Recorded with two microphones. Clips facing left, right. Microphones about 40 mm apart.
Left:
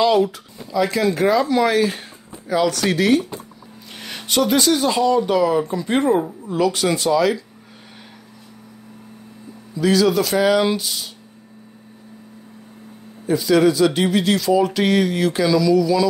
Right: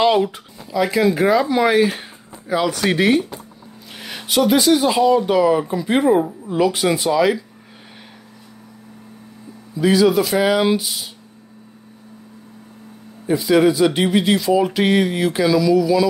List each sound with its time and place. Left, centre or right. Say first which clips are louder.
0.0 s a sound: even; right
0.7 s speech: right 2 dB; centre
4.0 s speech: right 2 dB; centre
9.8 s speech: right 2 dB; centre
13.3 s speech: right 1 dB; centre